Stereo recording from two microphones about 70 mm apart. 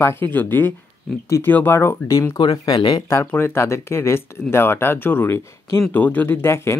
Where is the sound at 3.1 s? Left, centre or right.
Left.